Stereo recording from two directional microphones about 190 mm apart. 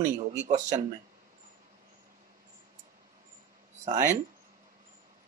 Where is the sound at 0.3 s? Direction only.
40° right (ahead or behind).